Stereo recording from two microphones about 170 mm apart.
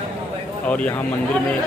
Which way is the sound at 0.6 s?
10° left (ahead or behind).